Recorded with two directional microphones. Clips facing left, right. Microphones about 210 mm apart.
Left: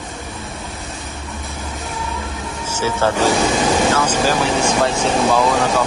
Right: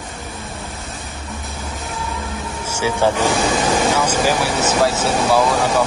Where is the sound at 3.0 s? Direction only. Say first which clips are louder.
Left 1 dB; 15° right (ahead or behind).